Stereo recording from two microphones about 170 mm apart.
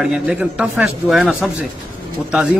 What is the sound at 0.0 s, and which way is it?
A man's voice, 5° right (ahead or behind).